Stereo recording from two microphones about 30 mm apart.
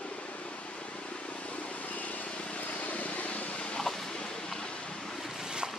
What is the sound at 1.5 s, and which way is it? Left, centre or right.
Vehicle, left.